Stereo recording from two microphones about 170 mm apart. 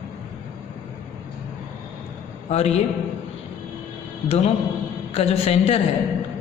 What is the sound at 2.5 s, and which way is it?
Speech, 40° left (ahead or behind).